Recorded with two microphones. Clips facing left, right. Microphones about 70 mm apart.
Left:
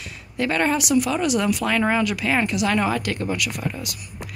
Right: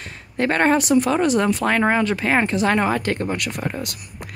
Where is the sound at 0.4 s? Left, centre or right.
Right.